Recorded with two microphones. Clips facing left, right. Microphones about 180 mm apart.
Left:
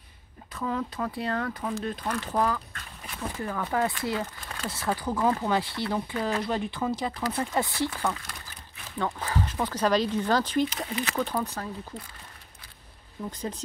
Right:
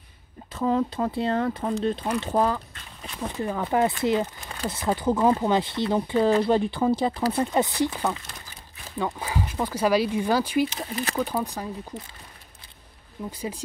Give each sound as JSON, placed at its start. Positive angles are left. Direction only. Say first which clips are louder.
{"t": 0.5, "sound": "speech", "louder": "right 7 dB", "side_deg": -30}
{"t": 13.3, "sound": "speech", "louder": "right 2 dB", "side_deg": -10}